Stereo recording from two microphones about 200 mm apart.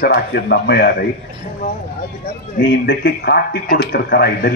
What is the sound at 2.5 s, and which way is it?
A man's voice, 55° left (ahead or behind).